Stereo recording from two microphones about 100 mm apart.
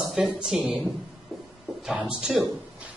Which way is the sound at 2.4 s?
Centre (ahead or behind).